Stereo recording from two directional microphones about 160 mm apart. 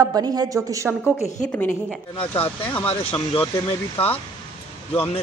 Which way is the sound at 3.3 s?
35° left (ahead or behind).